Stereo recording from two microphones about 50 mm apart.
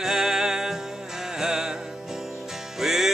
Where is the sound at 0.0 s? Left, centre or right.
Centre.